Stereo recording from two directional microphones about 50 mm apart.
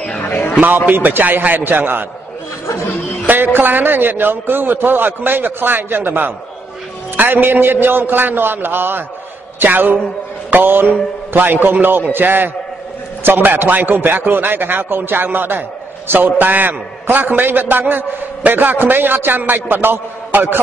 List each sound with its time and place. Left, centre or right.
0.3 s a sound: left
0.8 s a man's voice: right
3.3 s a man's voice: right